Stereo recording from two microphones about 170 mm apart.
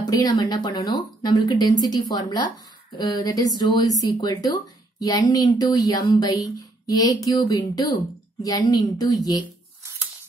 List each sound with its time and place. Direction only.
0.0 s speech: 20° left (ahead or behind)